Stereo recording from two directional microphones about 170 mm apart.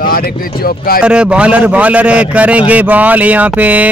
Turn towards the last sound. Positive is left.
turn(degrees=-10)  # may be behind; listen again after turning